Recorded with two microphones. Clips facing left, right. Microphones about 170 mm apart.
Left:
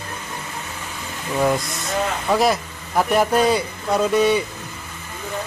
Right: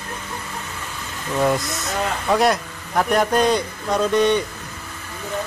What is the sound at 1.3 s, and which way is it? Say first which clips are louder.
Speech: even; centre (ahead or behind).